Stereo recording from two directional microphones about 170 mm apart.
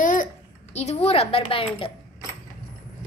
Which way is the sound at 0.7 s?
40° left (ahead or behind).